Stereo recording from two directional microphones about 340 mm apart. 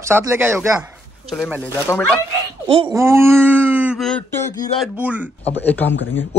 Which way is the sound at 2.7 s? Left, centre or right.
Centre.